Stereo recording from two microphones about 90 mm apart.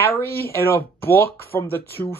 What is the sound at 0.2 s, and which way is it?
Speech, 25° left (ahead or behind).